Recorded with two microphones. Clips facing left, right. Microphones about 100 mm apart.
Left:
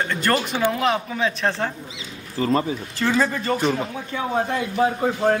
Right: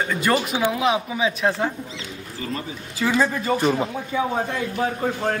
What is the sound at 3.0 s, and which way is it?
A man's voice, 5° right (ahead or behind).